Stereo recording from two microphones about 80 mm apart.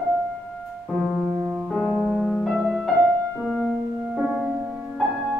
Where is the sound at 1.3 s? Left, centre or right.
Right.